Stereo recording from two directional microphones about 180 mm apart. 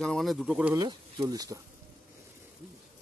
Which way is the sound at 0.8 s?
25° right (ahead or behind).